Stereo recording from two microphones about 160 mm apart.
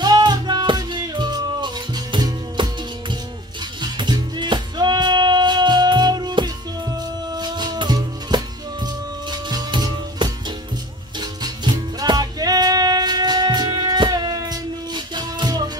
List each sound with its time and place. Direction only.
0.0 s music: 25° right (ahead or behind)
3.8 s music: 25° right (ahead or behind)